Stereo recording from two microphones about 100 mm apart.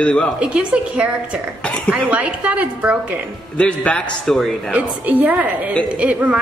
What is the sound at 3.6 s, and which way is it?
A man's voice, 10° left (ahead or behind).